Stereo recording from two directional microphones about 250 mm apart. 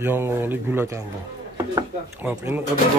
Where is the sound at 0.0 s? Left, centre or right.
Centre.